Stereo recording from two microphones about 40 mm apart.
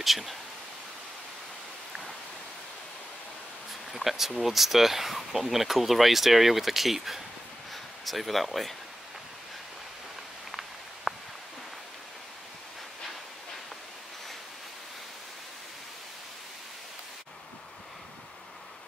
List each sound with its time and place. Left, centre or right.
0.0 s speech: centre
3.9 s speech: centre
11.1 s a sound: centre